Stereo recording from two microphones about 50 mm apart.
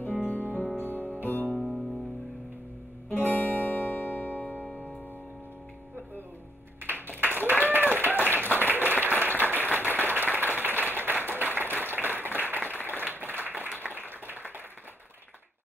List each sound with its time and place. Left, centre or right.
0.0 s music: left
1.5 s music: centre
3.1 s music: left
6.8 s a sound: right
8.6 s applause: right
10.0 s a sound: right
10.6 s applause: right
13.1 s a sound: right
13.6 s applause: right